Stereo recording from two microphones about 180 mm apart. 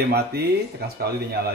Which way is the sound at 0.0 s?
60° right (ahead or behind).